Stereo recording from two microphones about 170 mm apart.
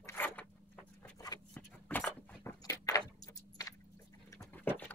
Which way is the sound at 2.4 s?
20° left (ahead or behind).